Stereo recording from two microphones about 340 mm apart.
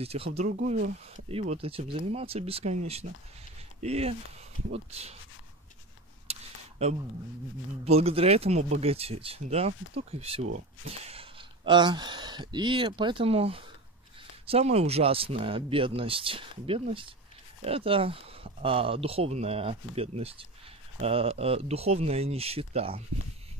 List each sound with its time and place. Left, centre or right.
0.0 s speech: centre
6.3 s a sound: centre
7.8 s speech: centre